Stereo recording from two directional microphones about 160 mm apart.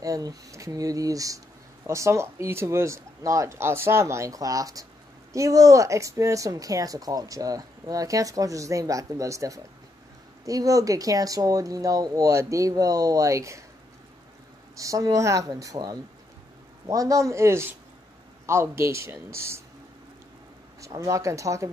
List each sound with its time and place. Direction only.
0.0 s speech: 20° right (ahead or behind)
14.8 s speech: 20° right (ahead or behind)
20.8 s speech: 20° right (ahead or behind)